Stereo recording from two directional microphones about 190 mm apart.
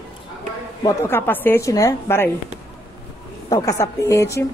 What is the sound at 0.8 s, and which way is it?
A woman's voice, 10° left (ahead or behind).